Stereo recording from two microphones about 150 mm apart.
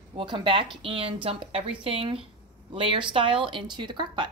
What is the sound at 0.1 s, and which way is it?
Speech, 35° right (ahead or behind).